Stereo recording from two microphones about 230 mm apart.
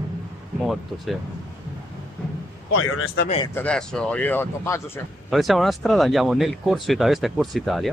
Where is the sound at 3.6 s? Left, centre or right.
Centre.